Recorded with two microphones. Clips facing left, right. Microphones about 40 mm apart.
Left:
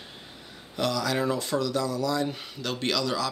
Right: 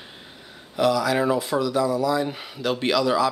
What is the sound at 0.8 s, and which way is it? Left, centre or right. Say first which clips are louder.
Speech: right 6 dB; centre.